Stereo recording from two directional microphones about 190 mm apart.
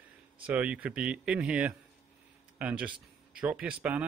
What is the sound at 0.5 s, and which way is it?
Speech, 10° right (ahead or behind).